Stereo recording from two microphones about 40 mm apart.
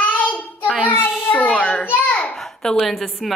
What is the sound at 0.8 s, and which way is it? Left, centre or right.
Speech, left.